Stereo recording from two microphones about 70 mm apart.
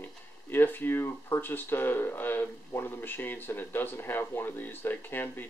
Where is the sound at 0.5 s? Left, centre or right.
Left.